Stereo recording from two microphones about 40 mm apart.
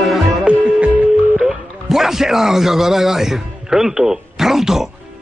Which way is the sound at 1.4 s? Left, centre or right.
Centre.